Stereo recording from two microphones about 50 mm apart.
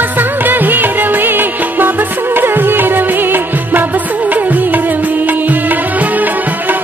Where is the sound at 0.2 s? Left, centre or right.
Right.